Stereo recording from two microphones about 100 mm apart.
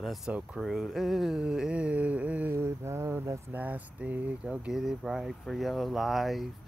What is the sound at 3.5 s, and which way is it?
Speech, 15° right (ahead or behind).